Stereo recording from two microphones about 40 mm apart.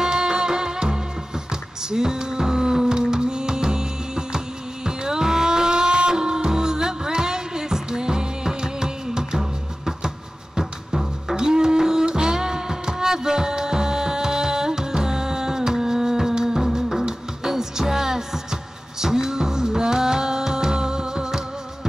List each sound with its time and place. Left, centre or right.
0.0 s music: centre